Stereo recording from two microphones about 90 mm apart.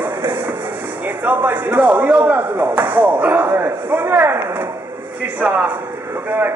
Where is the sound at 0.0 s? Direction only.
25° right (ahead or behind).